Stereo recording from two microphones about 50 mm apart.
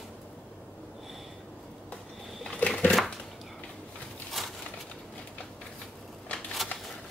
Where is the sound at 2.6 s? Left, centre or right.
Left.